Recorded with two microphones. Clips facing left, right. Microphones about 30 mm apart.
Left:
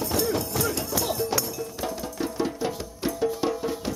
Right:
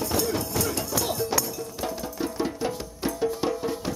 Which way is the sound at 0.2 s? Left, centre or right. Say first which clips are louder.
Left 1 dB; centre.